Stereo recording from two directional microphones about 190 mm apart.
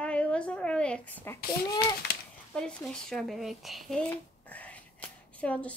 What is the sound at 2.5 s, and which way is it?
A woman's voice, 5° left (ahead or behind).